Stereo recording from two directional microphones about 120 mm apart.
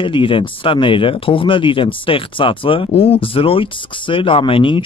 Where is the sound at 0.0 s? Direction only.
45° left (ahead or behind).